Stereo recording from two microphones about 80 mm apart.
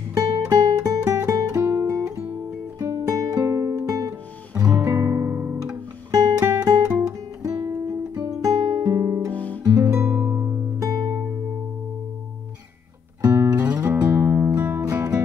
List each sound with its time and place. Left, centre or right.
0.1 s music: right
5.0 s music: right
6.1 s music: right
6.6 s guitar: right
8.9 s music: right
9.3 s music: centre
9.7 s music: right
9.9 s music: right
10.8 s music: right
13.5 s music: right